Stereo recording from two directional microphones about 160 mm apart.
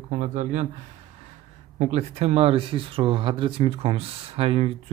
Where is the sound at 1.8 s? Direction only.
45° right (ahead or behind).